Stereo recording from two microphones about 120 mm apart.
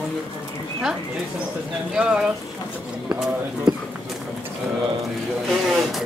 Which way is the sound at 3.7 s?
35° right (ahead or behind).